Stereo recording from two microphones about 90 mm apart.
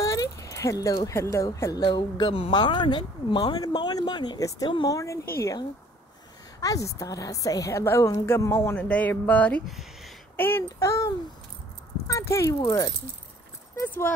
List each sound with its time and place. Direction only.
0.0 s a sound: 35° left (ahead or behind)
1.0 s a woman's voice: 35° left (ahead or behind); by 4.4 s 55° left (ahead or behind)
4.4 s a woman's voice: 40° left (ahead or behind)
6.6 s a woman's voice: 40° left (ahead or behind)
8.7 s speech: 15° left (ahead or behind)
9.7 s a sound: centre (ahead or behind)
10.3 s speech: 25° left (ahead or behind)
10.8 s a woman's voice: 35° left (ahead or behind)
13.8 s speech: 20° left (ahead or behind)